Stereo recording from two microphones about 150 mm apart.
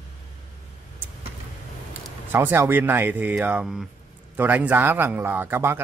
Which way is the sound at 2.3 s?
15° right (ahead or behind).